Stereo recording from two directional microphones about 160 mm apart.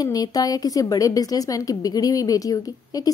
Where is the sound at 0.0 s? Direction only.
25° left (ahead or behind).